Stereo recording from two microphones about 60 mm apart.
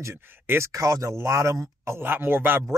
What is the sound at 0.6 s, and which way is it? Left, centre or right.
Speech, right.